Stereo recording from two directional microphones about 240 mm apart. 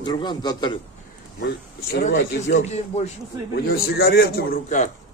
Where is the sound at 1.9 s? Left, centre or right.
Left.